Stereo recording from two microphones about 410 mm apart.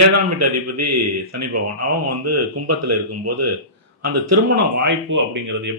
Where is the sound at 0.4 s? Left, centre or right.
Right.